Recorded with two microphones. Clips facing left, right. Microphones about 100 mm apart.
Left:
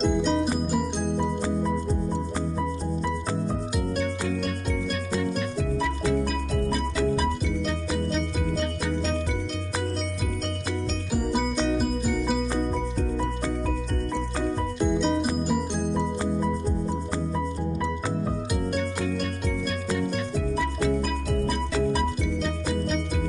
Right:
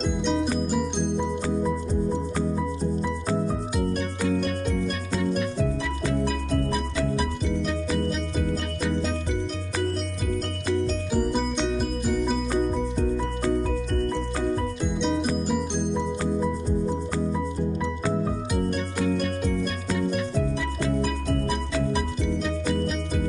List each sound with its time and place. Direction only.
0.0 s music: centre (ahead or behind)
14.8 s music: centre (ahead or behind)
18.7 s music: centre (ahead or behind)